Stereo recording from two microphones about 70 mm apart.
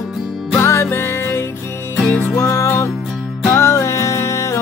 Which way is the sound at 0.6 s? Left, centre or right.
Left.